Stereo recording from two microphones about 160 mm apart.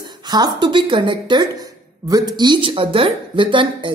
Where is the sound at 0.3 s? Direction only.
25° right (ahead or behind).